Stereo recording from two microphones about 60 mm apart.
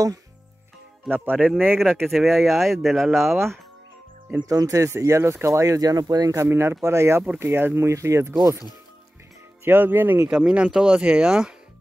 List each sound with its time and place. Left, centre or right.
1.1 s speech: right
1.7 s speech: centre
4.5 s speech: right
6.5 s speech: right
6.8 s speech: right
7.9 s speech: right
9.7 s speech: right
10.3 s speech: centre